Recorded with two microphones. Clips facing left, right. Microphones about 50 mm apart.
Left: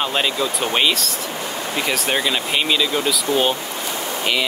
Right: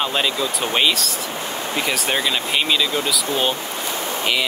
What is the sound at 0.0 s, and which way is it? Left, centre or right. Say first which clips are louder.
Speech: left 1 dB; centre.